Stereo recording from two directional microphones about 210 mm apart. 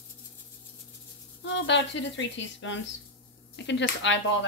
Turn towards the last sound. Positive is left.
turn(degrees=60)  # may be behind; listen again after turning